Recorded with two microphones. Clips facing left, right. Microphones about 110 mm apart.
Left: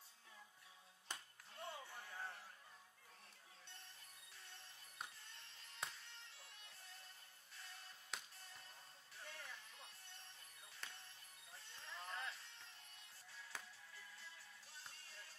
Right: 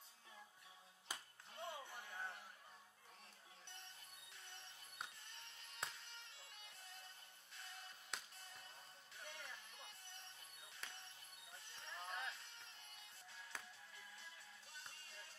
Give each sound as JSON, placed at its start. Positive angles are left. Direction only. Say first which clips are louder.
{"t": 1.1, "sound": "music", "louder": "right 1 dB", "side_deg": -5}
{"t": 1.5, "sound": "a sound", "louder": "right 1 dB", "side_deg": -20}
{"t": 5.3, "sound": "music", "louder": "right 2 dB", "side_deg": -20}
{"t": 8.1, "sound": "music", "louder": "even", "side_deg": 0}
{"t": 9.1, "sound": "music", "louder": "even", "side_deg": -20}
{"t": 10.8, "sound": "music", "louder": "even", "side_deg": 0}
{"t": 11.5, "sound": "music", "louder": "even", "side_deg": -20}
{"t": 13.5, "sound": "music", "louder": "even", "side_deg": 5}
{"t": 13.9, "sound": "music", "louder": "even", "side_deg": -20}